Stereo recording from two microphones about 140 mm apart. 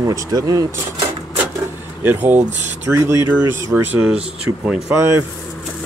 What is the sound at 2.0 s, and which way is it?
Speech, 15° right (ahead or behind).